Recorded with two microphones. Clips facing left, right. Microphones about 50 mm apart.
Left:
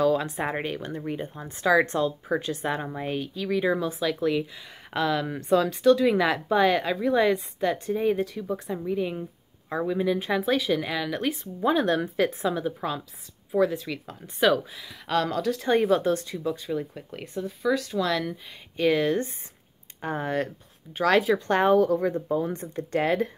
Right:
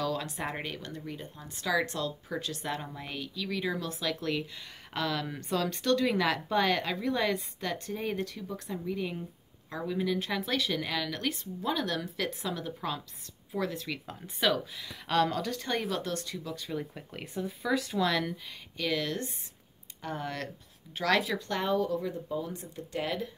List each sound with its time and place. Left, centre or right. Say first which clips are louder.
0.0 s speech: left 9 dB; centre
4.0 s speech: left 7 dB; centre
11.4 s speech: left 12 dB; left
12.4 s speech: left 9 dB; centre
13.5 s speech: left 9 dB; centre
15.7 s speech: left 12 dB; centre
16.6 s speech: left 6 dB; centre
18.8 s speech: left 9 dB; left
21.5 s speech: left 10 dB; left